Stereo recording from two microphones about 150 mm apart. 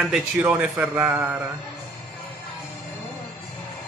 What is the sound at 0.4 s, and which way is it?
A man's voice, 5° right (ahead or behind).